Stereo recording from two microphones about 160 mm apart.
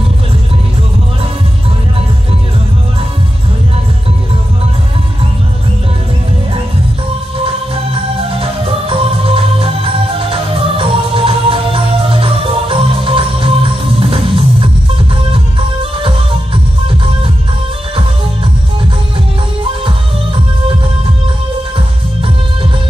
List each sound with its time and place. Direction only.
8.4 s music: 35° right (ahead or behind)